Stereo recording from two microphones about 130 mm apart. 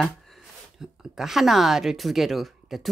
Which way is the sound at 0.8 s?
5° right (ahead or behind).